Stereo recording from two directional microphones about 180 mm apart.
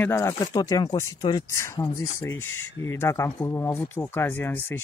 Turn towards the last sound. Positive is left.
turn(degrees=10)  # may be behind; listen again after turning